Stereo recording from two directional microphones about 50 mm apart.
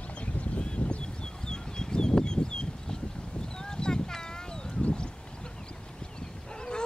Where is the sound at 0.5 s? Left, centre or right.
Left.